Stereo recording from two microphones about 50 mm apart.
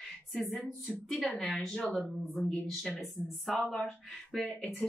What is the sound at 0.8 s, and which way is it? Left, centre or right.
Speech, centre.